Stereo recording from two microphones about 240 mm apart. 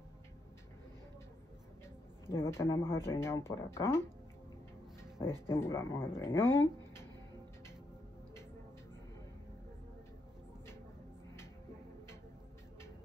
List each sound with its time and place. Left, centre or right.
2.3 s speech: centre
5.5 s speech: centre